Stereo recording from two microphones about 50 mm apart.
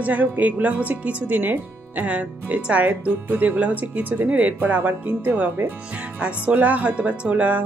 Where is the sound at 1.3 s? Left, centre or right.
Right.